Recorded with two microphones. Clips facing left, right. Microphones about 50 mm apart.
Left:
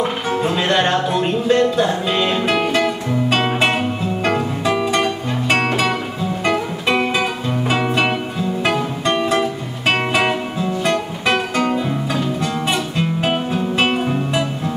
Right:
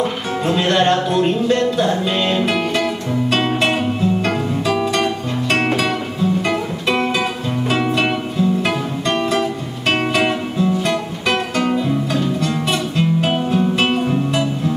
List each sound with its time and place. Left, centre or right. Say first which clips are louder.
0.4 s music: right 2 dB; centre